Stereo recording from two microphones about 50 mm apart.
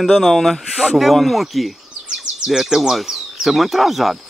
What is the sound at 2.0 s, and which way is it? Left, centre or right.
Speech, centre.